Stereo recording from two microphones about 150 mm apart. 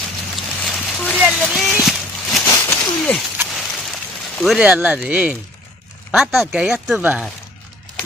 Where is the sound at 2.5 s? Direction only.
20° left (ahead or behind).